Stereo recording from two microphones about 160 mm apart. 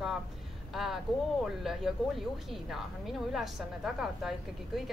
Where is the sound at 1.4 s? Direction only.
Centre (ahead or behind).